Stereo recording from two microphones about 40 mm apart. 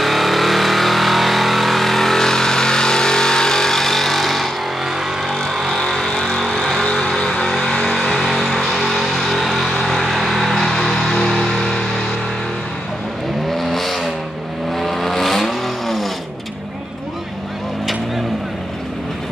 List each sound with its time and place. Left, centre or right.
0.0 s vehicle: centre
8.0 s vehicle: centre
11.2 s music: centre
13.5 s vehicle: centre